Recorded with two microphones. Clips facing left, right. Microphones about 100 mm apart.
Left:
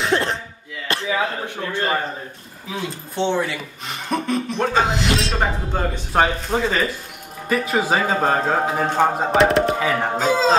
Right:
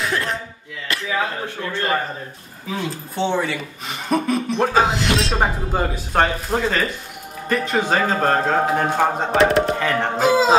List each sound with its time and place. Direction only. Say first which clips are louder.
0.0 s cough: left 3 dB; 25° left (ahead or behind)
0.9 s a sound: left 2 dB; 30° left (ahead or behind)
1.7 s speech: even; 20° left (ahead or behind)
2.9 s speech: left 1 dB; centre (ahead or behind)
10.1 s speech: right 3 dB; 10° right (ahead or behind)